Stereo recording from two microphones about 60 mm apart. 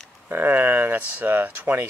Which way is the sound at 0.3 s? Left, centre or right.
Right.